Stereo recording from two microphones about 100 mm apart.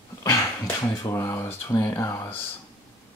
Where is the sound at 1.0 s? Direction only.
30° left (ahead or behind).